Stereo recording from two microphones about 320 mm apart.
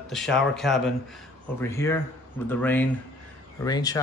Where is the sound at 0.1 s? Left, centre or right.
Centre.